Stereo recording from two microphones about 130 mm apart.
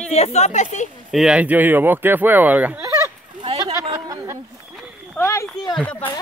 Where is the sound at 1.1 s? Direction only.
5° right (ahead or behind).